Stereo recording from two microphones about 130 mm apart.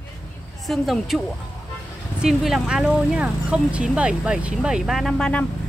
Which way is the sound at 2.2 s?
5° right (ahead or behind).